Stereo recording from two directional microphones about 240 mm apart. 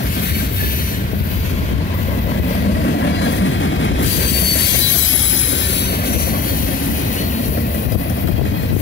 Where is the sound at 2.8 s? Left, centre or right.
Left.